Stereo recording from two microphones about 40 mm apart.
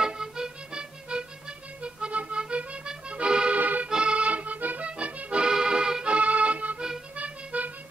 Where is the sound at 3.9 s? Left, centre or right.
Right.